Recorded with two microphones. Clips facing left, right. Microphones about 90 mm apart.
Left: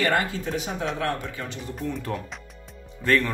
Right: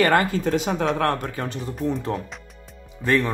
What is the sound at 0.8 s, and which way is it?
Speech, 55° right (ahead or behind).